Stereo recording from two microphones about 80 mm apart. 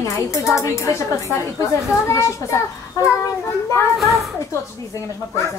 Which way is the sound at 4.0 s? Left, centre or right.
Centre.